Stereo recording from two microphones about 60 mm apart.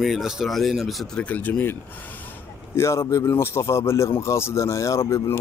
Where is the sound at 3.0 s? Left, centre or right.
Left.